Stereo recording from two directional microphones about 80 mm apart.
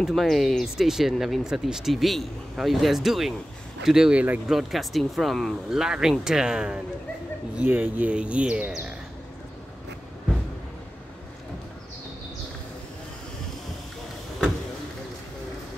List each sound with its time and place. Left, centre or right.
0.0 s speech: centre
4.5 s speech: centre
7.5 s speech: right